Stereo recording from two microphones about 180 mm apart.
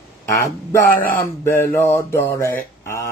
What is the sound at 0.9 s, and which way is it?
Speech, 50° left (ahead or behind).